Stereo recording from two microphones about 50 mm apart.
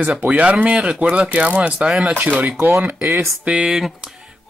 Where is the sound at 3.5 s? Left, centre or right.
Centre.